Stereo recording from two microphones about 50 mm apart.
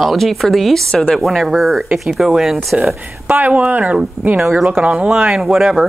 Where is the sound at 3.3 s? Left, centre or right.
Right.